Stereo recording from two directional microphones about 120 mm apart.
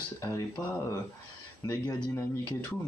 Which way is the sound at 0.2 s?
25° left (ahead or behind).